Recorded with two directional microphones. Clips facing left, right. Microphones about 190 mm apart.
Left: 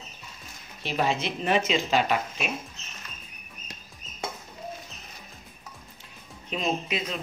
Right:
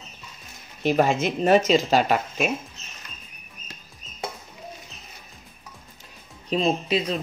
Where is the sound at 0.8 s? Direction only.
45° right (ahead or behind).